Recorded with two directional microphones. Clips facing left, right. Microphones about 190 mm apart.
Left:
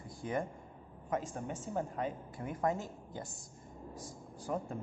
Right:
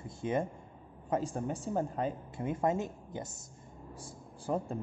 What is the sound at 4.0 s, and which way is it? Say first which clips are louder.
Speech: left 1 dB; 30° right (ahead or behind).